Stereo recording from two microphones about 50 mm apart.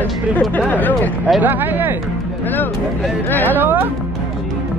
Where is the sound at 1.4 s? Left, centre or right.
Right.